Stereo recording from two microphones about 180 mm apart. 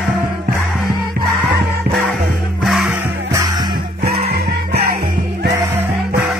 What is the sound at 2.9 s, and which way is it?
Music, 15° right (ahead or behind).